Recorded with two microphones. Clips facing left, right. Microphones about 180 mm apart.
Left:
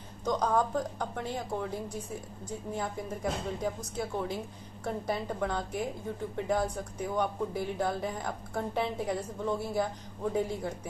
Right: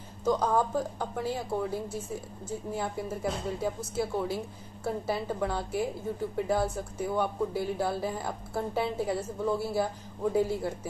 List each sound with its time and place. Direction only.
0.2 s speech: 5° right (ahead or behind)